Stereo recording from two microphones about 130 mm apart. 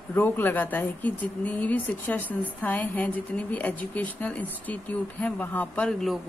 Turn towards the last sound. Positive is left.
turn(degrees=5)  # may be behind; listen again after turning